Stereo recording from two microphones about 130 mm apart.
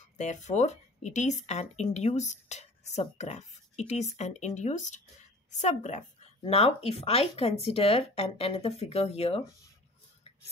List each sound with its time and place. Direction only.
0.2 s speech: 65° left (ahead or behind)
6.5 s speech: 45° left (ahead or behind)